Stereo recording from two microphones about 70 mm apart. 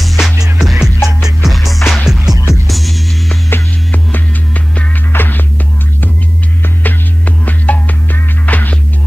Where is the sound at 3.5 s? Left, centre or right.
Left.